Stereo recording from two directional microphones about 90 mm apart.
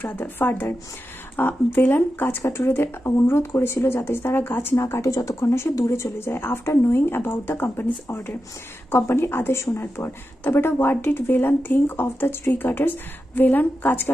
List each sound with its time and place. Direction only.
0.0 s speech: 20° left (ahead or behind)